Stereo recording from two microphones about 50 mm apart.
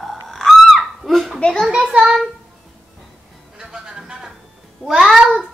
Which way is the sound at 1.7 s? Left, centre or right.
Centre.